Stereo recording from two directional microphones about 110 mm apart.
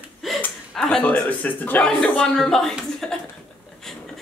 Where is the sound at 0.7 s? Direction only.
5° left (ahead or behind).